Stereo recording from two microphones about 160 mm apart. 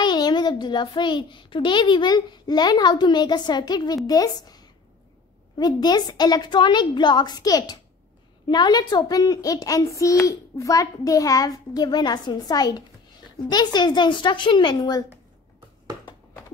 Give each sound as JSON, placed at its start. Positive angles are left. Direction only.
{"t": 0.0, "sound": "a child's voice", "side_deg": 25}